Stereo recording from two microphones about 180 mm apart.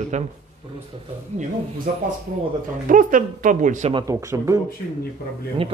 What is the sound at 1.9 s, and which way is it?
Speech, 50° right (ahead or behind).